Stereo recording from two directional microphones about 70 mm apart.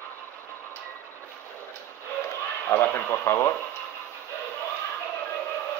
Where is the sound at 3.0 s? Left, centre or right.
Left.